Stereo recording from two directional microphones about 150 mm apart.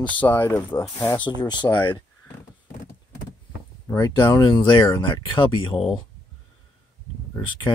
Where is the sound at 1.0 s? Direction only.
25° left (ahead or behind).